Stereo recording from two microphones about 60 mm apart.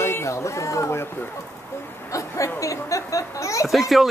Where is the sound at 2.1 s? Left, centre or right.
Left.